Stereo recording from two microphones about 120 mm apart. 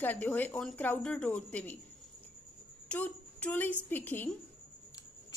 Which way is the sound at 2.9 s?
10° left (ahead or behind).